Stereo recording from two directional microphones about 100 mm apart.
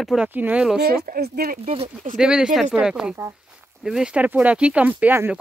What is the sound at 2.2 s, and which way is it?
Speech, 5° right (ahead or behind).